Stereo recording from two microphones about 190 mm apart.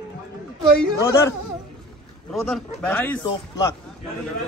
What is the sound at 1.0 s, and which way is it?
Speech, 15° left (ahead or behind).